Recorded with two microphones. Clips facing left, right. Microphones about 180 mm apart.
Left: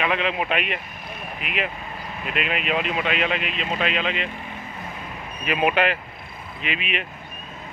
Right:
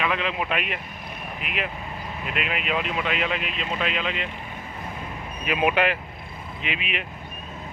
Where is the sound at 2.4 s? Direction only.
65° left (ahead or behind).